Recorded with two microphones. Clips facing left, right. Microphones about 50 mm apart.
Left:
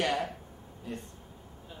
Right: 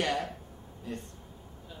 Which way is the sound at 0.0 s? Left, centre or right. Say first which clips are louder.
Left 1 dB; centre.